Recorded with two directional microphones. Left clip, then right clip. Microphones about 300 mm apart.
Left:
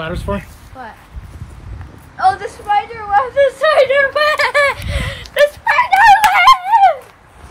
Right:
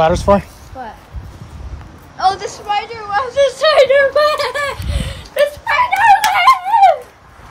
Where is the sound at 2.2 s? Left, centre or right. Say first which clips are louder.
Left 1 dB; left.